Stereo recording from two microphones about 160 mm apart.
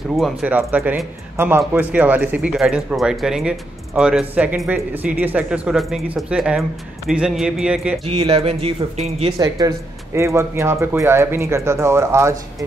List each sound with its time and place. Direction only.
0.1 s speech: centre (ahead or behind)
0.5 s speech: 10° right (ahead or behind)
8.1 s speech: 35° right (ahead or behind)
9.4 s speech: 25° right (ahead or behind)